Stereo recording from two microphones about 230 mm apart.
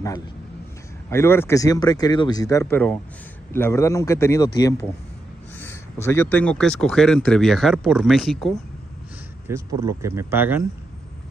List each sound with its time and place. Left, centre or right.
1.1 s speech: centre
9.5 s speech: centre